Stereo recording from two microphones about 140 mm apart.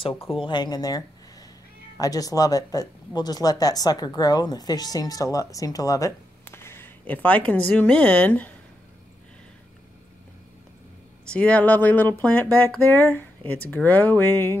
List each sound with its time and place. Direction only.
0.4 s speech: 30° left (ahead or behind); by 8.5 s 10° left (ahead or behind)
11.2 s speech: 10° left (ahead or behind)